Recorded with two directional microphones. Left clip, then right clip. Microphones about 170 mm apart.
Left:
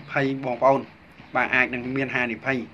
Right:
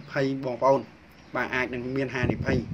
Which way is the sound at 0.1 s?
55° right (ahead or behind).